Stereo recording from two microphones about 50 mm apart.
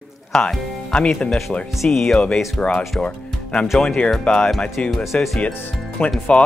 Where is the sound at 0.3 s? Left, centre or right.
Centre.